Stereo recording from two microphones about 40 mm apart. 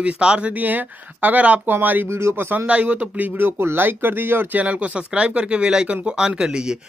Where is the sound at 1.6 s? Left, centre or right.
Right.